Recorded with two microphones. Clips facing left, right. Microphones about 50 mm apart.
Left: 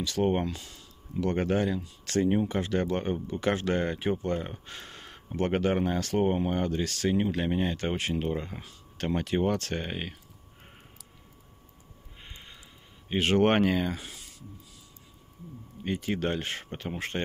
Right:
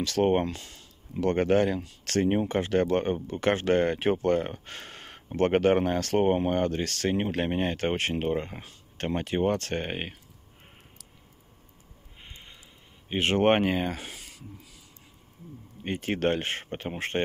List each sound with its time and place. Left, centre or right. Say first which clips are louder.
0.0 s speech: right 3 dB; right
0.3 s speech: right 3 dB; right
4.5 s speech: right 3 dB; right
13.2 s speech: right 1 dB; right
13.8 s speech: right 1 dB; right
15.8 s speech: right 2 dB; right